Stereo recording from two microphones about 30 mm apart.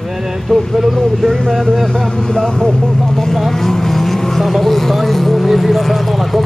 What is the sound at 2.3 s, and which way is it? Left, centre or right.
Speech, centre.